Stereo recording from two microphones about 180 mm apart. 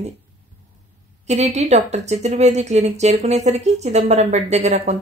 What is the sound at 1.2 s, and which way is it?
Speech, 40° right (ahead or behind).